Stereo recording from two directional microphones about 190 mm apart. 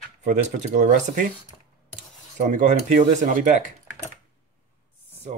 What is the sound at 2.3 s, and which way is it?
Speech, 40° right (ahead or behind).